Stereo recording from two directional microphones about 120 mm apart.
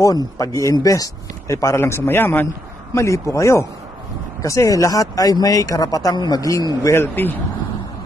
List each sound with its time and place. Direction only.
0.4 s speech: 25° left (ahead or behind)